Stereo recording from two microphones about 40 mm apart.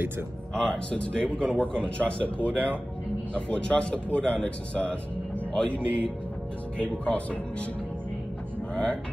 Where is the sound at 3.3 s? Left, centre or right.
Left.